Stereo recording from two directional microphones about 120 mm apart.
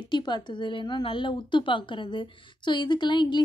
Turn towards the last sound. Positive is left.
turn(degrees=40)  # may be behind; listen again after turning